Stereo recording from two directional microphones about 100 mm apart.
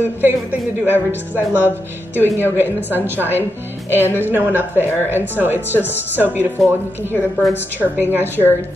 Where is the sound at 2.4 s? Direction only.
20° right (ahead or behind).